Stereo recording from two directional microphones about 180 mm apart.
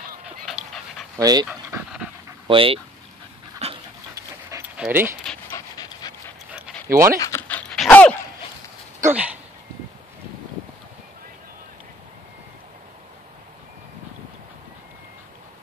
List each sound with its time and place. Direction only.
0.2 s dog: centre (ahead or behind)
1.1 s speech: 20° right (ahead or behind)
1.5 s dog: 10° right (ahead or behind)
2.4 s speech: 30° right (ahead or behind)
3.6 s dog: 35° right (ahead or behind)
4.1 s pant: 15° right (ahead or behind)
4.7 s speech: 10° right (ahead or behind)
5.5 s dog: 20° left (ahead or behind)
6.9 s speech: 15° right (ahead or behind)
7.2 s dog: 15° left (ahead or behind)
9.0 s a sound: 5° right (ahead or behind)